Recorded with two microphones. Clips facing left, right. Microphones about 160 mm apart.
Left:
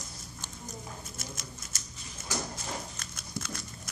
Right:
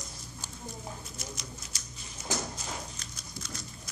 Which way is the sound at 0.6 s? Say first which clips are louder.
Right 2 dB; 50° left (ahead or behind).